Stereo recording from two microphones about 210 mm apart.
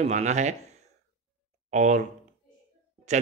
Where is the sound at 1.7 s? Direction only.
35° right (ahead or behind).